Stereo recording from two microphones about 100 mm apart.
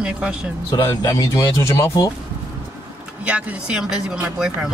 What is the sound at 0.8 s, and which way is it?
Speech, 35° left (ahead or behind).